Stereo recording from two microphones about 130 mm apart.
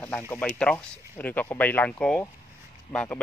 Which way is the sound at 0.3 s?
10° left (ahead or behind).